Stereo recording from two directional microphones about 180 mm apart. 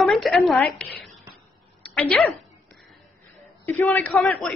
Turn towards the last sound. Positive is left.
turn(degrees=0)  # may be behind; listen again after turning